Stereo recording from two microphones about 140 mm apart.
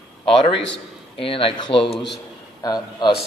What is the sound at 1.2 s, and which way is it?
Speech, 40° left (ahead or behind).